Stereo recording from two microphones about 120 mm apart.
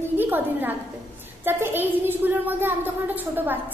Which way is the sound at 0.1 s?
15° right (ahead or behind).